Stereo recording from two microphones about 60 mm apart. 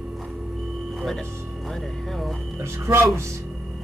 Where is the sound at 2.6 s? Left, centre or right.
Right.